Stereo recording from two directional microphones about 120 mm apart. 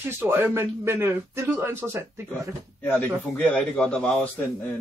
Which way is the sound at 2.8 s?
15° left (ahead or behind).